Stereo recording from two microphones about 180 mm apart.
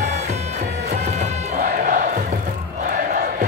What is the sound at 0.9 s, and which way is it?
Music, 40° right (ahead or behind).